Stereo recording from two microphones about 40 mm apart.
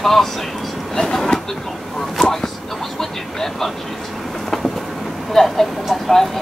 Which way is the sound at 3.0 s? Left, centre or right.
Centre.